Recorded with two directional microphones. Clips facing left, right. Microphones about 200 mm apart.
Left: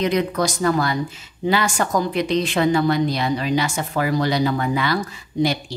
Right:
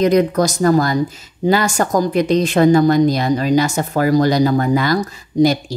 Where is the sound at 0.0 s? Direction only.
45° right (ahead or behind).